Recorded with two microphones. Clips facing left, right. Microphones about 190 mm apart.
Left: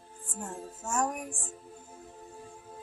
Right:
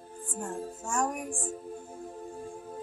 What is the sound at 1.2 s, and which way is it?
Speech, 45° right (ahead or behind).